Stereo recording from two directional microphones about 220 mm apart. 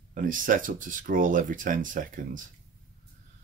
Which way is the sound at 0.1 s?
40° right (ahead or behind).